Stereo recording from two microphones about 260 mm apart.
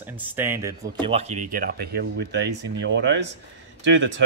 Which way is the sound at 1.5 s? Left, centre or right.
Right.